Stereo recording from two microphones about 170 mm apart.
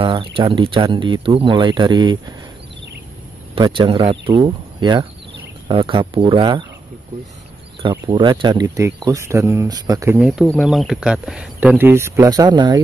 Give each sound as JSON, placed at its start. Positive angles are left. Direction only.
{"t": 0.0, "sound": "speech", "side_deg": -30}
{"t": 3.5, "sound": "speech", "side_deg": -30}
{"t": 8.1, "sound": "speech", "side_deg": -30}
{"t": 10.1, "sound": "speech", "side_deg": -5}